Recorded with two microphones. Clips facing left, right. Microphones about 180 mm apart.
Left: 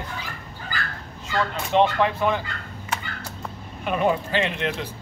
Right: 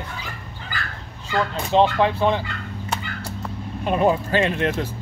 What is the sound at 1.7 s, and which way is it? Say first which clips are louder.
Speech: right 2 dB; 30° right (ahead or behind).